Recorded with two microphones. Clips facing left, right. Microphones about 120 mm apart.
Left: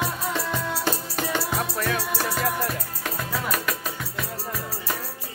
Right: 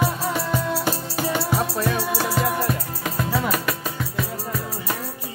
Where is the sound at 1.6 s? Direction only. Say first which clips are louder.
Right 3 dB; 25° right (ahead or behind).